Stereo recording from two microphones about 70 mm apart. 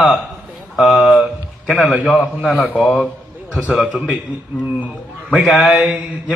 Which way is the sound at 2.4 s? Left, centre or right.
Centre.